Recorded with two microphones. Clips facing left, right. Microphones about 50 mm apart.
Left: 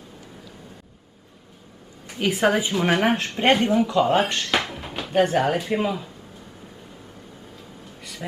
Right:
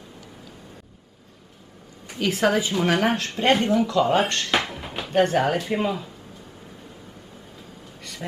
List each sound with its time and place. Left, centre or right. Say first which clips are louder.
2.1 s a woman's voice: left 1 dB; centre
4.2 s speech: even; centre
8.0 s a sound: even; centre